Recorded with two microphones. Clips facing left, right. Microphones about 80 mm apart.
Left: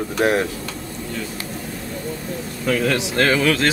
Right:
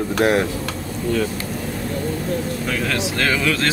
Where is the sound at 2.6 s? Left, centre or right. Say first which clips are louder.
Left 7 dB; left.